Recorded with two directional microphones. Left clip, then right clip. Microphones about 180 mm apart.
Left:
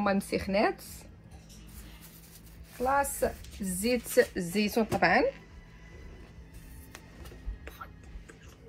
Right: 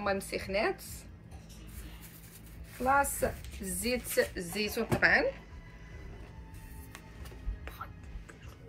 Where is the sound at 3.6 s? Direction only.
35° left (ahead or behind).